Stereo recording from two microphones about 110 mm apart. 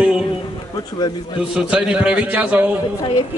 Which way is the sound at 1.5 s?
10° right (ahead or behind).